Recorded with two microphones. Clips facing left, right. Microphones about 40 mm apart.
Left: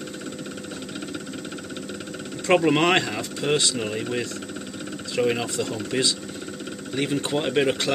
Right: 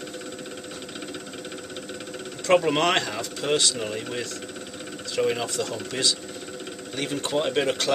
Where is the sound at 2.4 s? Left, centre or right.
Centre.